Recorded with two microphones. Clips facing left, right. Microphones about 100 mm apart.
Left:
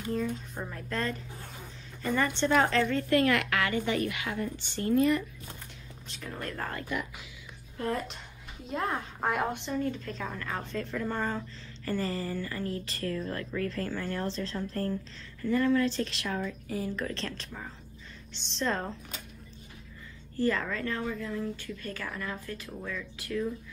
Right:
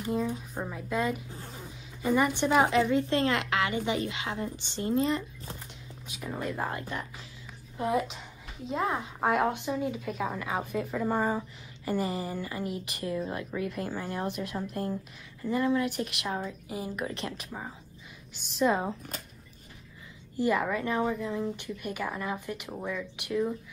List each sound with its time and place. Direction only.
0.1 s a woman's voice: 15° right (ahead or behind)
6.0 s a woman's voice: 10° right (ahead or behind)
6.8 s speech: 35° right (ahead or behind)
7.7 s a woman's voice: 15° right (ahead or behind)
18.3 s a woman's voice: 10° right (ahead or behind)
20.3 s a woman's voice: 15° right (ahead or behind)